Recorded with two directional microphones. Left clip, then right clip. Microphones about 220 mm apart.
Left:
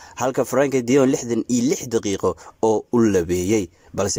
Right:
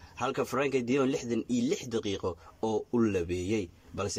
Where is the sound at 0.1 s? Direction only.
25° left (ahead or behind).